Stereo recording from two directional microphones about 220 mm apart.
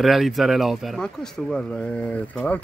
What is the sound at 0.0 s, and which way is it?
Speech, centre (ahead or behind).